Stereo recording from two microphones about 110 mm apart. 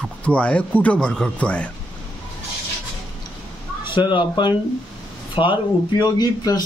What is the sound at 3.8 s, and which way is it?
Speech, 45° left (ahead or behind).